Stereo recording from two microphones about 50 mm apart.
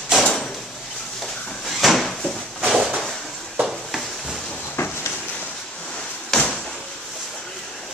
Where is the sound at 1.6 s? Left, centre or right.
Centre.